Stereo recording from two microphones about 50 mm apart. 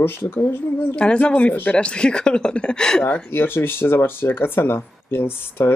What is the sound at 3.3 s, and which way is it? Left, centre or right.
Speech, left.